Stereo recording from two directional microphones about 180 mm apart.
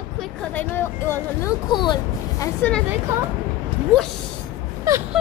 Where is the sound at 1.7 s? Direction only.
25° left (ahead or behind).